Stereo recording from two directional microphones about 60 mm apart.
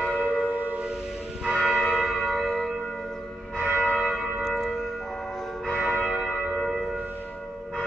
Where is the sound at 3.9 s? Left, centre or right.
Centre.